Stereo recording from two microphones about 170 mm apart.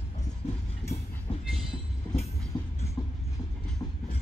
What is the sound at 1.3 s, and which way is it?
Train, 35° left (ahead or behind).